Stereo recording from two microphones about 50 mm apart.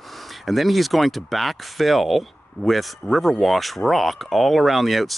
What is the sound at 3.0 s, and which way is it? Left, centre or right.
Speech, centre.